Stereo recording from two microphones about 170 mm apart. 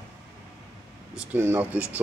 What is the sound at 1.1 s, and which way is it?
Speech, 15° right (ahead or behind).